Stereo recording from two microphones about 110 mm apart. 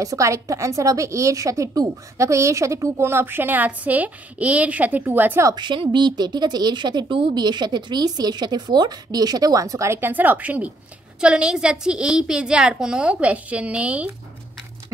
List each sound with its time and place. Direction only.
0.0 s a woman's voice: 30° right (ahead or behind)
5.5 s a woman's voice: 45° right (ahead or behind); by 14.1 s 10° right (ahead or behind)